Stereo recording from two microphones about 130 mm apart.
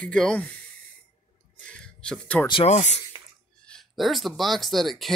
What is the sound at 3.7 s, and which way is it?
Speech, centre (ahead or behind).